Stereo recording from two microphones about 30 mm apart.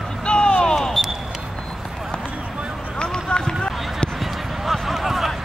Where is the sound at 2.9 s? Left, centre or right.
Left.